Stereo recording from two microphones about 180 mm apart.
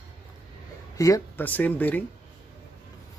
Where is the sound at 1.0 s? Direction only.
15° left (ahead or behind).